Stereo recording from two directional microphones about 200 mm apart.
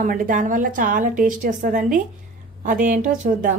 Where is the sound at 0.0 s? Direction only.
45° right (ahead or behind).